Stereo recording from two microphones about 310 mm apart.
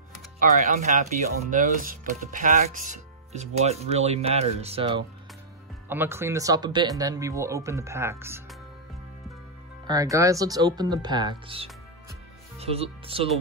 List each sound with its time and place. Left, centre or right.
0.4 s speech: right
5.9 s speech: centre
9.8 s speech: centre